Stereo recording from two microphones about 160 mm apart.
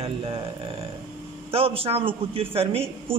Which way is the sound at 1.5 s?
35° right (ahead or behind).